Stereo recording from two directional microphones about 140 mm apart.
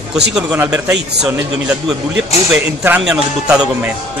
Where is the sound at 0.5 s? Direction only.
15° right (ahead or behind).